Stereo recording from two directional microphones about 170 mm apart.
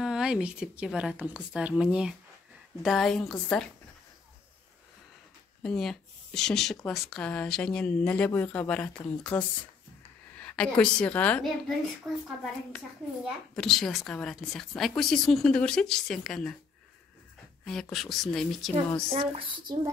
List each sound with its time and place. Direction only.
0.0 s a woman's voice: 5° right (ahead or behind)
5.6 s a woman's voice: 5° left (ahead or behind)
12.1 s a woman's voice: 5° right (ahead or behind)
17.6 s a woman's voice: 5° left (ahead or behind)
19.1 s speech: 30° right (ahead or behind)